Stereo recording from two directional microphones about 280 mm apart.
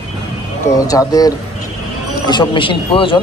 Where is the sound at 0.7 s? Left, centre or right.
Centre.